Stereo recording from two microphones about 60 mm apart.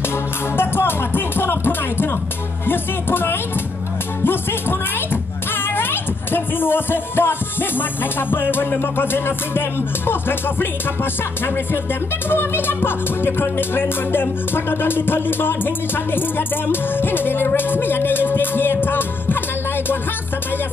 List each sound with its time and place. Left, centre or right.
0.6 s music: left
12.3 s music: left